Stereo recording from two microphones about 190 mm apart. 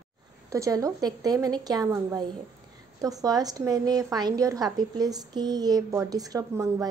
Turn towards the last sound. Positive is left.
turn(degrees=-15)  # may be behind; listen again after turning